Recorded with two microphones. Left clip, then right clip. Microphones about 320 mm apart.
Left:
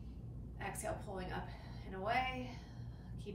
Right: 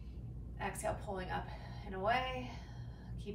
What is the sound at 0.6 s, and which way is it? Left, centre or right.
A woman's voice, centre.